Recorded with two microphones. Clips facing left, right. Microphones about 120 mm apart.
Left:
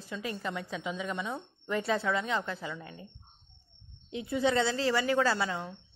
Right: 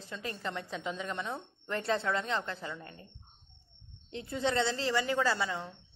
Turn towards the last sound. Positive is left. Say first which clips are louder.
# left 2 dB
turn(degrees=15)  # may be behind; listen again after turning